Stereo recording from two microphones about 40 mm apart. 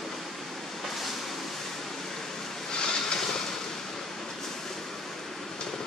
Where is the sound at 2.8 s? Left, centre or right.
Left.